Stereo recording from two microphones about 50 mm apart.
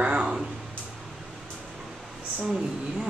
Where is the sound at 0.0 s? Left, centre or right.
Centre.